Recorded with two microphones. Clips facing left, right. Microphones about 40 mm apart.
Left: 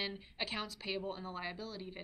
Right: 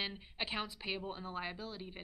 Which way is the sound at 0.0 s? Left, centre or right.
Centre.